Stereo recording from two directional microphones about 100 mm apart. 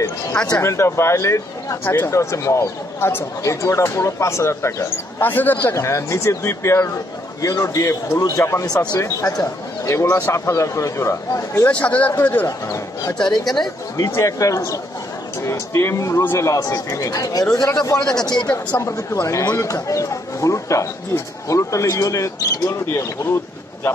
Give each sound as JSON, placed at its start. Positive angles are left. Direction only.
{"t": 0.0, "sound": "a sound", "side_deg": 30}
{"t": 0.5, "sound": "a man's voice", "side_deg": 30}
{"t": 11.6, "sound": "speech", "side_deg": 15}
{"t": 12.4, "sound": "a man's voice", "side_deg": 30}
{"t": 13.4, "sound": "speech", "side_deg": 5}
{"t": 13.9, "sound": "a man's voice", "side_deg": 35}
{"t": 18.8, "sound": "a man's voice", "side_deg": 30}